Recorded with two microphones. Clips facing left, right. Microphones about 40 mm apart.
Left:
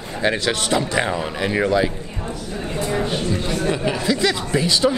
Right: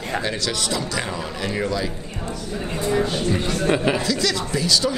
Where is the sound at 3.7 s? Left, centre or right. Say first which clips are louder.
Right 4 dB; centre.